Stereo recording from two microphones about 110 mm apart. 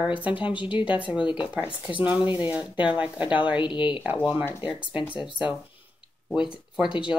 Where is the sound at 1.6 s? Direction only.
15° right (ahead or behind).